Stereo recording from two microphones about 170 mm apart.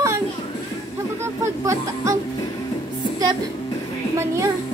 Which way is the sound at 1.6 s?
20° right (ahead or behind).